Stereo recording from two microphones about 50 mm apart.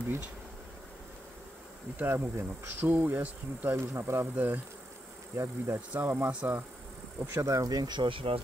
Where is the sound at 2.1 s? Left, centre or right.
Right.